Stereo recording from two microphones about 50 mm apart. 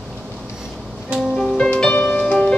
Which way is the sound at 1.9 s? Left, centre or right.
Left.